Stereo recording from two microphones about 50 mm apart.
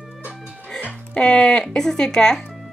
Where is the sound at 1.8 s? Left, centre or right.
Centre.